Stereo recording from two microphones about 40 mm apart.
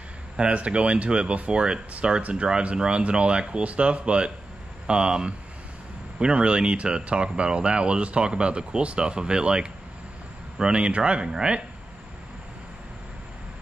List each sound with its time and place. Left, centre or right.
0.4 s speech: right